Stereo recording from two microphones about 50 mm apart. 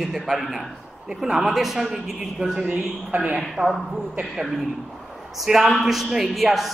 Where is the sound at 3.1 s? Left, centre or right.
Right.